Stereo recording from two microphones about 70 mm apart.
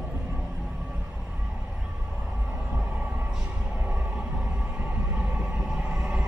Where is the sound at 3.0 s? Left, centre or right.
Centre.